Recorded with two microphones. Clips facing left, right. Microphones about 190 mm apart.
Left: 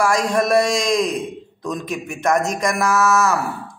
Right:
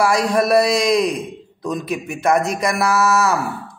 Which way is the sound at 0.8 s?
35° right (ahead or behind).